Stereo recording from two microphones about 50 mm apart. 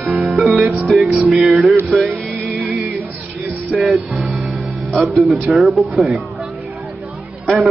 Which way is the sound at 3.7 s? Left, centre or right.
Centre.